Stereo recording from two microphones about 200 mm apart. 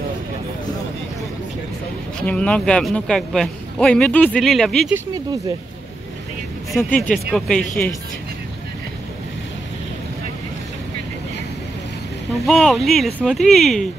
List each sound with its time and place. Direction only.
2.2 s speech: 5° left (ahead or behind)
4.9 s speech: 20° right (ahead or behind)
6.8 s speech: 5° left (ahead or behind)
12.4 s speech: centre (ahead or behind)